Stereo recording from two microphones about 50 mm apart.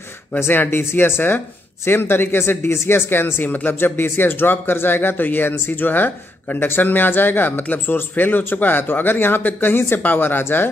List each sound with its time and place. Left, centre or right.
0.4 s speech: left